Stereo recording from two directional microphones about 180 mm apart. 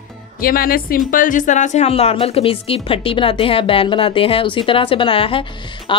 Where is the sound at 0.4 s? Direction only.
55° left (ahead or behind).